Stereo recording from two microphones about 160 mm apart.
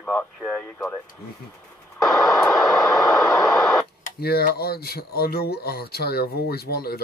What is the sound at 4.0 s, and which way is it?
Speech, 75° left (ahead or behind).